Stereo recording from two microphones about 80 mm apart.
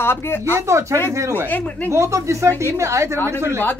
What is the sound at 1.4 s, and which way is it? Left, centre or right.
Speech, left.